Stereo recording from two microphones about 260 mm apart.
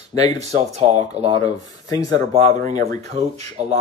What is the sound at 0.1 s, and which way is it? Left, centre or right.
Speech, right.